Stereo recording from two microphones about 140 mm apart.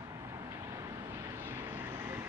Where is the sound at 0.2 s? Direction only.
20° right (ahead or behind).